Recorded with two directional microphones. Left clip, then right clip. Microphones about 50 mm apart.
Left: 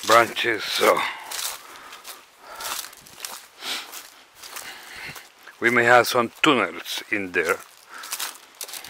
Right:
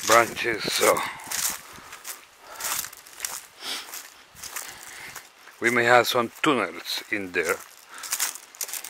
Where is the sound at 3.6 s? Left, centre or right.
Centre.